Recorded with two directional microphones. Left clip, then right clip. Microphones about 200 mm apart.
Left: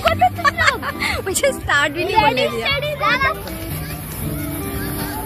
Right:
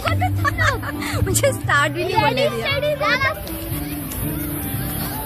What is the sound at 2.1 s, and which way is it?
Speech, 50° left (ahead or behind).